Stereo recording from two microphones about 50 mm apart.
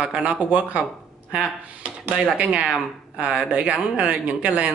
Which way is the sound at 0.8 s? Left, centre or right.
Centre.